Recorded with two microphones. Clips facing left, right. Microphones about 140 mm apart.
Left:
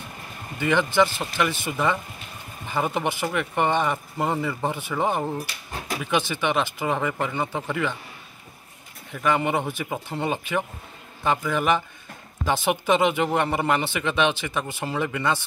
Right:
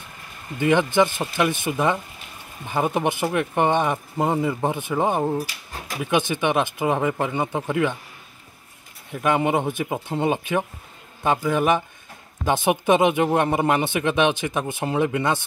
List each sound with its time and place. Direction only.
0.6 s speech: 20° right (ahead or behind)
9.1 s speech: 20° right (ahead or behind)